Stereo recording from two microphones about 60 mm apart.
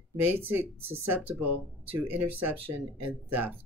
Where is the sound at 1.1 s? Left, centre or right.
Right.